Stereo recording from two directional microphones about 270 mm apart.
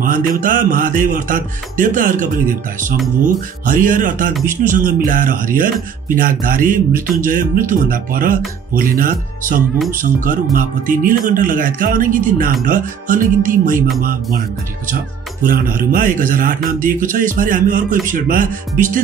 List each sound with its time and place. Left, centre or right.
0.0 s music: right
4.5 s speech: right
12.6 s music: right
15.4 s speech: right